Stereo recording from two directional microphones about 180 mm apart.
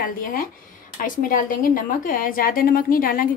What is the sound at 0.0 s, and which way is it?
A woman's voice, 50° left (ahead or behind).